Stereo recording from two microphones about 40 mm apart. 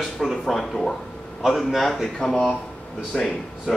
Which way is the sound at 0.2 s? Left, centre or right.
Centre.